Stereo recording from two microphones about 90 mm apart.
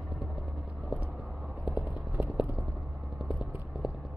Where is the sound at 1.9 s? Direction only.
15° right (ahead or behind).